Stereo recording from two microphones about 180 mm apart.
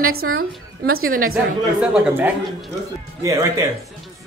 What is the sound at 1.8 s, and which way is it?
Speech, 5° right (ahead or behind).